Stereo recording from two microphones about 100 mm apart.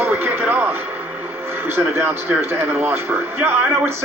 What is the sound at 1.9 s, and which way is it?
Speech, 25° right (ahead or behind).